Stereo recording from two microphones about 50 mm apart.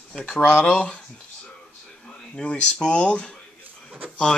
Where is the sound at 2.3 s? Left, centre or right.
Left.